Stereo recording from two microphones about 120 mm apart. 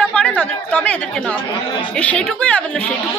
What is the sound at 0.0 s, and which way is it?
A woman's voice, 10° left (ahead or behind).